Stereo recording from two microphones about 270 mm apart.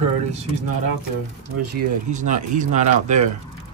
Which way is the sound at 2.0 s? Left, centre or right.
Right.